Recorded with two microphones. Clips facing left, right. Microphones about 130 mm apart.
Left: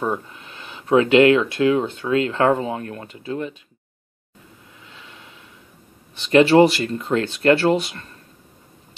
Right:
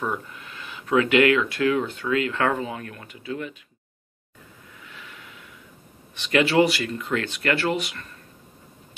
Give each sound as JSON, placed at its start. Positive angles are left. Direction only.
{"t": 0.0, "sound": "speech", "side_deg": 25}
{"t": 4.8, "sound": "snort", "side_deg": 25}
{"t": 6.1, "sound": "speech", "side_deg": 30}